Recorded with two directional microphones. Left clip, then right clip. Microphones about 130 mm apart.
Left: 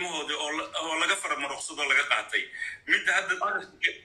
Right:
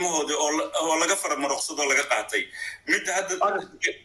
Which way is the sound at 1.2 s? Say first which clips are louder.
Right 5 dB; 45° right (ahead or behind).